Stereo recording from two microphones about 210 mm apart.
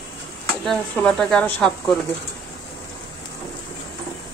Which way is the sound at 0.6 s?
5° left (ahead or behind).